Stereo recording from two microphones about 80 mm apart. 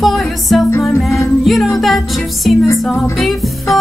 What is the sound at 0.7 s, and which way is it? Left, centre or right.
Music, left.